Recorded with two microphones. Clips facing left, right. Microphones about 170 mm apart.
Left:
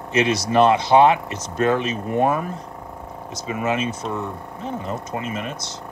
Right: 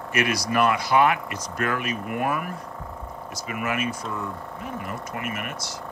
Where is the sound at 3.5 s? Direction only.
25° left (ahead or behind).